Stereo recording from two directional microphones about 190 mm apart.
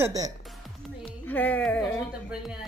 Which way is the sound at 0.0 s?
20° right (ahead or behind).